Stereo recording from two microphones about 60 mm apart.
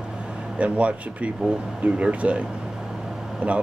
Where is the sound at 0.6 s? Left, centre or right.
Right.